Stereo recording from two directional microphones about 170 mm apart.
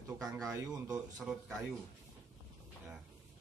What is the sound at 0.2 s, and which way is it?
Speech, 20° right (ahead or behind).